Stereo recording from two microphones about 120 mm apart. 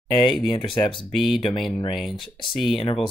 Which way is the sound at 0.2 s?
Centre (ahead or behind).